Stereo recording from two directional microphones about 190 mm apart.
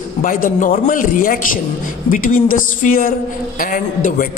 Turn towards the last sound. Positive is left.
turn(degrees=45)  # may be behind; listen again after turning